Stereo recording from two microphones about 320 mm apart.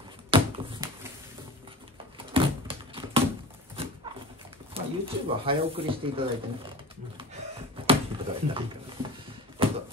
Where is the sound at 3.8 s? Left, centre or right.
Centre.